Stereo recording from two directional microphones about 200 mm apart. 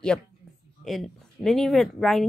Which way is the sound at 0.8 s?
Centre (ahead or behind).